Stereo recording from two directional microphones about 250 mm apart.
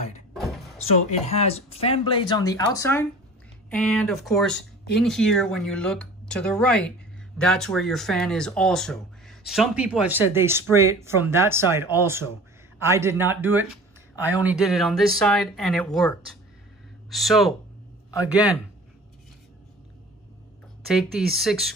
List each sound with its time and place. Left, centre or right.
0.3 s vehicle: centre
1.2 s a man's voice: left; by 17.6 s centre
20.9 s speech: centre